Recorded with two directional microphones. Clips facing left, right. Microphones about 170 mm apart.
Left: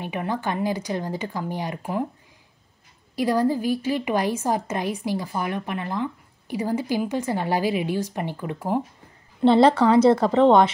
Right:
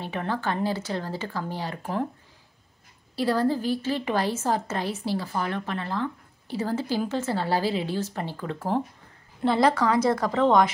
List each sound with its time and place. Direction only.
0.0 s a woman's voice: 15° left (ahead or behind)
3.2 s a woman's voice: 15° left (ahead or behind)
9.4 s a woman's voice: 25° left (ahead or behind)